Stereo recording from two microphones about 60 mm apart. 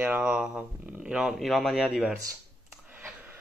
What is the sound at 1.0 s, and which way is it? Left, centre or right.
Speech, centre.